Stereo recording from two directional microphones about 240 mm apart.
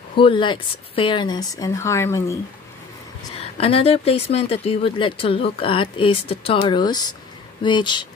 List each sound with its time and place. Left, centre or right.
0.1 s speech: left
3.5 s speech: left